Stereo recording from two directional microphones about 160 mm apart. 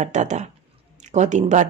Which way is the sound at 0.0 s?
50° right (ahead or behind).